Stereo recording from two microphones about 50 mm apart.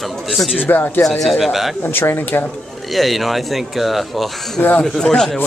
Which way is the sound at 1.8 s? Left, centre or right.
Left.